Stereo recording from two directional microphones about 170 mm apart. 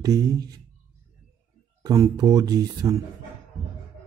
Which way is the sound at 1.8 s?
20° right (ahead or behind).